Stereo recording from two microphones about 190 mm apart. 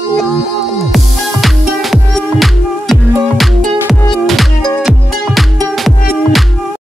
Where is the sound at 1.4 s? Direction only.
Centre (ahead or behind).